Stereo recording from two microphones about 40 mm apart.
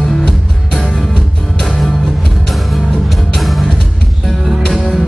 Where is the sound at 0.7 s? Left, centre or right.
Centre.